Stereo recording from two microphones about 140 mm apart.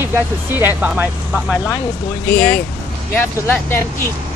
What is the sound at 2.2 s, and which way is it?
Speech, 10° left (ahead or behind).